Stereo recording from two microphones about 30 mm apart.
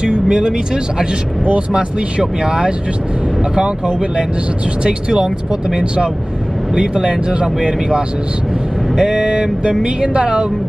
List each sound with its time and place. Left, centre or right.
0.0 s vehicle: right
1.7 s speech: right
2.4 s speech: right
6.7 s speech: right
9.0 s speech: right